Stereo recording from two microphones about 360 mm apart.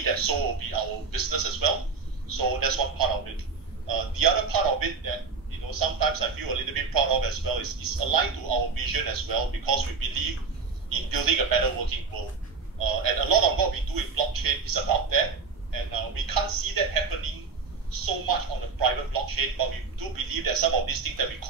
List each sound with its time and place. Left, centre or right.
0.0 s a man's voice: right
18.8 s a man's voice: right